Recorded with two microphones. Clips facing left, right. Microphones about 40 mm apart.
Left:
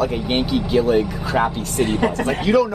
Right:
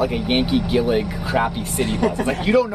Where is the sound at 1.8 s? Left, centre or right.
Left.